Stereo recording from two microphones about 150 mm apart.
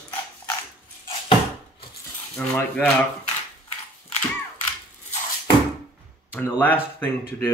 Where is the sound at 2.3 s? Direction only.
5° left (ahead or behind).